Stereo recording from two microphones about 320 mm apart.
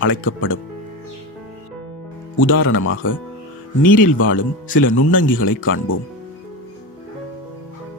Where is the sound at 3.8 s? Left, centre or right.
Left.